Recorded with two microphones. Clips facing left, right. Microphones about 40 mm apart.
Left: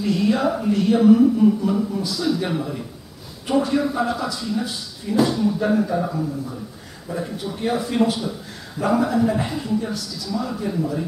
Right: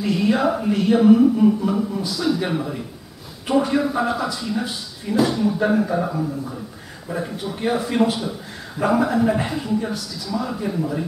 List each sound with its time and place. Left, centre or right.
0.0 s a man's voice: centre